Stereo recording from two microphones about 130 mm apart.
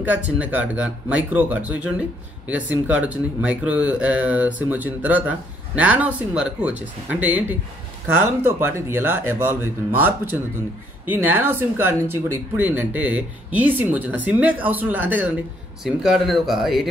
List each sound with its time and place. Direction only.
0.0 s speech: 10° right (ahead or behind)
15.8 s speech: centre (ahead or behind)